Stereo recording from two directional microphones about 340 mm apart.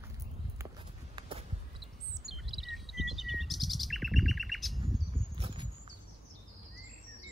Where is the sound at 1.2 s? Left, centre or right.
Centre.